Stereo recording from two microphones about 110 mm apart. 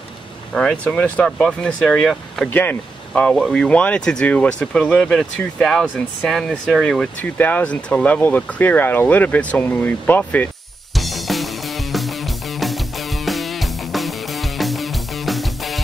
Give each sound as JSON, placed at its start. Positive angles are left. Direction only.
{"t": 0.6, "sound": "speech", "side_deg": 5}
{"t": 2.5, "sound": "speech", "side_deg": 15}
{"t": 10.9, "sound": "music", "side_deg": 0}